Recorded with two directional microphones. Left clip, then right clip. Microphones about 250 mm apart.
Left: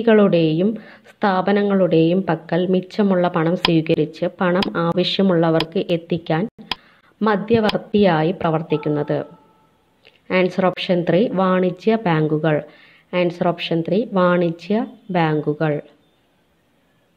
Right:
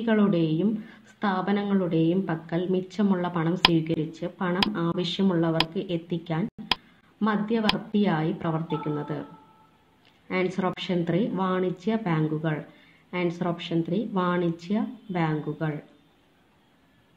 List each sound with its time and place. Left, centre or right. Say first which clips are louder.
0.0 s a woman's voice: left 10 dB; left
10.2 s speech: left 10 dB; left